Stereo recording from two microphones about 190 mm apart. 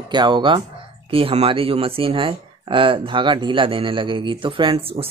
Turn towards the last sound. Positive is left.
turn(degrees=-30)  # may be behind; listen again after turning